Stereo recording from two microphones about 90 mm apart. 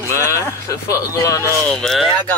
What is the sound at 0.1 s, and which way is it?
Speech, 30° left (ahead or behind).